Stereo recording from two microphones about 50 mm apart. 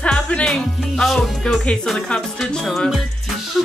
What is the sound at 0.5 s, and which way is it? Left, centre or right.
Speech, centre.